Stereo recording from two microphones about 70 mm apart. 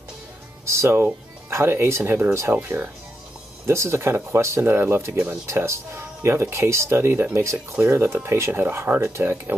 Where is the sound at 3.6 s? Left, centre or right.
Right.